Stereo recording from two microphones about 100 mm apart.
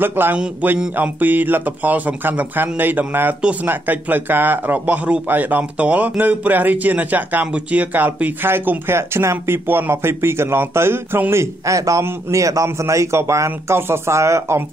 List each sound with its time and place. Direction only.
0.0 s speech: 20° right (ahead or behind)